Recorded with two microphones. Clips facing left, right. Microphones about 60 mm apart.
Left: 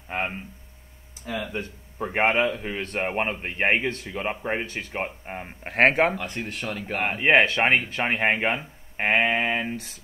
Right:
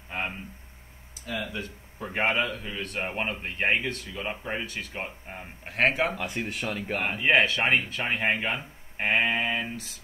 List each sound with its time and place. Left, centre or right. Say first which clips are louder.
0.1 s a man's voice: left 4 dB; left
6.1 s speech: even; centre
7.1 s a man's voice: left 4 dB; left